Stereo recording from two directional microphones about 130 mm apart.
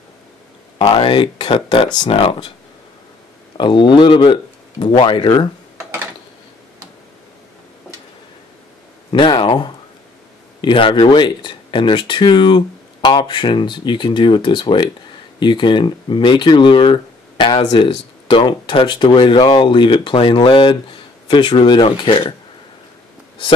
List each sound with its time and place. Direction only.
1.0 s speech: 40° left (ahead or behind)
2.1 s speech: 50° left (ahead or behind)
3.5 s speech: 35° left (ahead or behind)
9.1 s speech: 40° left (ahead or behind)